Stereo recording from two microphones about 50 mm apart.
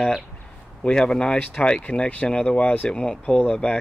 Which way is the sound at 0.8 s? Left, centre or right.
Centre.